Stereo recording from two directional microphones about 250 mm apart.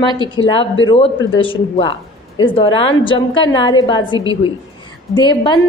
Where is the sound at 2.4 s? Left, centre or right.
Centre.